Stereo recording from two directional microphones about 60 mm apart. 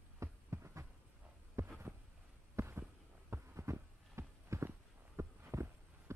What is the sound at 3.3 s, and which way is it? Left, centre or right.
Heart sounds, right.